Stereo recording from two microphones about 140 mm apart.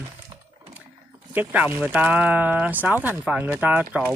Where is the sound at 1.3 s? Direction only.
10° right (ahead or behind).